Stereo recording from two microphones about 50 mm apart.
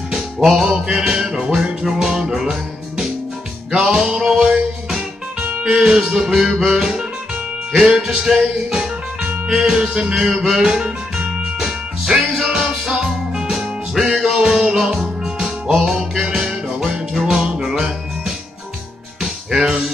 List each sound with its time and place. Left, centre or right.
0.4 s music: centre
1.9 s music: centre
3.7 s music: centre
5.4 s music: right
5.9 s music: centre
19.5 s music: centre